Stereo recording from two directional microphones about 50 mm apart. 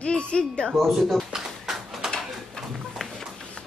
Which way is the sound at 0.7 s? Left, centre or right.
Centre.